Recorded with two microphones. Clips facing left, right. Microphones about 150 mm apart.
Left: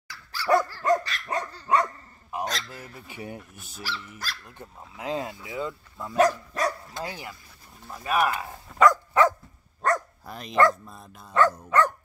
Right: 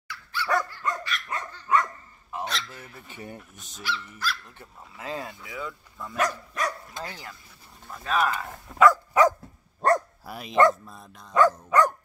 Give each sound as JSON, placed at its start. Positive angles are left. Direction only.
{"t": 0.1, "sound": "dog", "side_deg": 40}
{"t": 2.4, "sound": "speech", "side_deg": 40}
{"t": 2.8, "sound": "speech", "side_deg": 10}
{"t": 3.8, "sound": "speech", "side_deg": 40}
{"t": 4.5, "sound": "speech", "side_deg": 15}
{"t": 6.2, "sound": "speech", "side_deg": 35}
{"t": 7.0, "sound": "speech", "side_deg": 15}
{"t": 8.7, "sound": "dog", "side_deg": -10}
{"t": 9.8, "sound": "dog", "side_deg": -30}
{"t": 10.2, "sound": "speech", "side_deg": -5}
{"t": 11.7, "sound": "dog", "side_deg": -10}